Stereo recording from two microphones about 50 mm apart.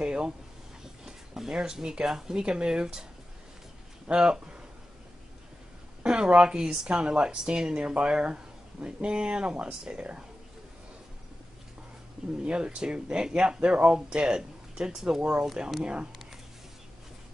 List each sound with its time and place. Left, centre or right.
0.0 s a sound: centre
1.0 s speech: centre
4.1 s speech: centre
6.0 s speech: centre
12.4 s speech: centre
15.8 s speech: centre